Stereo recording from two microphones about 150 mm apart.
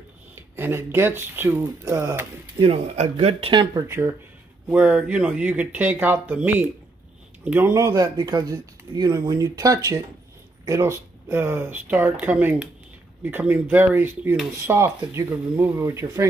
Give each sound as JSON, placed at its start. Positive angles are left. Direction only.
{"t": 0.6, "sound": "speech", "side_deg": -15}
{"t": 2.6, "sound": "speech", "side_deg": -40}
{"t": 3.8, "sound": "speech", "side_deg": -20}